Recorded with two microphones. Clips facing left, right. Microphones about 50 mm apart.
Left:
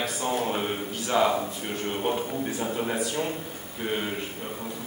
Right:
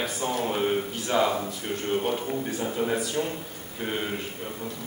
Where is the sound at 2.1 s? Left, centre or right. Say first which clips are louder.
Even; centre.